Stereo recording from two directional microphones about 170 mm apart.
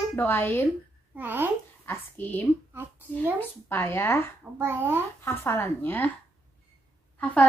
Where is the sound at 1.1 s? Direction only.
10° right (ahead or behind).